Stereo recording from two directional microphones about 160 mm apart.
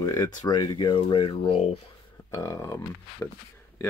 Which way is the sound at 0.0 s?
25° left (ahead or behind).